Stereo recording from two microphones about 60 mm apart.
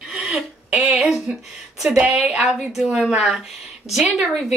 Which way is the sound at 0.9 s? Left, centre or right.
Centre.